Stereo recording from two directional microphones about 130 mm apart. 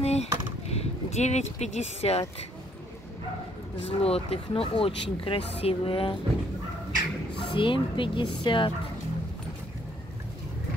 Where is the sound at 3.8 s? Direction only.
50° left (ahead or behind).